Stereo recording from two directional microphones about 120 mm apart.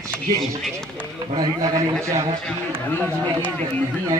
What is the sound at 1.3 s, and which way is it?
Speech, 35° right (ahead or behind).